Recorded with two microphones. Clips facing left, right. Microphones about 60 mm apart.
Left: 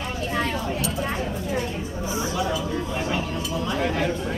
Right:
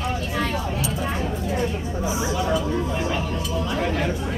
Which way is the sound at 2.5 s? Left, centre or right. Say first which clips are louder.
Right 3 dB; centre.